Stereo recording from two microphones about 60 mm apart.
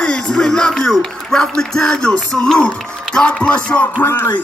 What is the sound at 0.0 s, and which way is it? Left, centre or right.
Music, centre.